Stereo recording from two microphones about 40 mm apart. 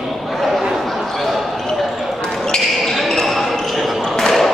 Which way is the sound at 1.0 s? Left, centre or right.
Centre.